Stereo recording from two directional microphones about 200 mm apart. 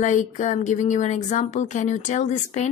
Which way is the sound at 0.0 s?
35° left (ahead or behind).